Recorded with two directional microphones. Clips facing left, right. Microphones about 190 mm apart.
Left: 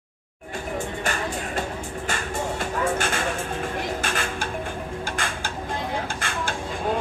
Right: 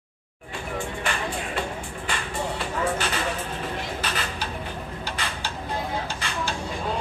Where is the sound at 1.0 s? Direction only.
45° left (ahead or behind).